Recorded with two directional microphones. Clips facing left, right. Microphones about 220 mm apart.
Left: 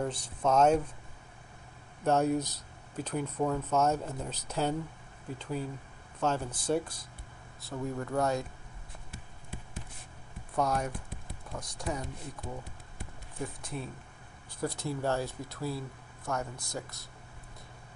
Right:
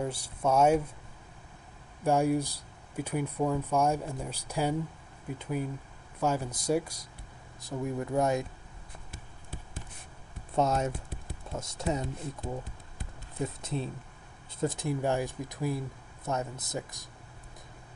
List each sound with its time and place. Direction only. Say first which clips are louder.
0.0 s speech: even; 10° right (ahead or behind)
2.0 s speech: right 1 dB; 10° right (ahead or behind)
10.5 s speech: right 3 dB; 25° right (ahead or behind)
13.4 s speech: right 4 dB; 25° right (ahead or behind)